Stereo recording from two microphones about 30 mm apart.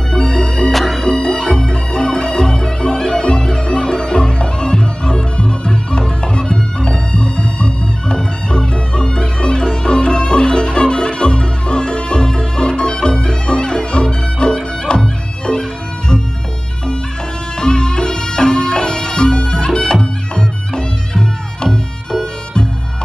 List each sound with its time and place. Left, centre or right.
0.1 s music: left
0.7 s music: centre
1.2 s music: left
1.7 s music: left
17.6 s music: left